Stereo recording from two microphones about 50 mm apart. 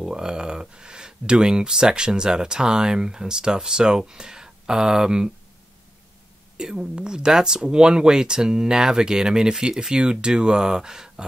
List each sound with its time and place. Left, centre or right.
0.0 s speech: centre
6.5 s speech: centre